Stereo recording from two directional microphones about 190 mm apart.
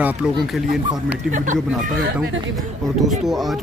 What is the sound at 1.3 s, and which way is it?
Speech, 40° right (ahead or behind).